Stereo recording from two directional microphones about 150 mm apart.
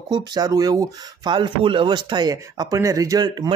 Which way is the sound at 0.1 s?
25° right (ahead or behind).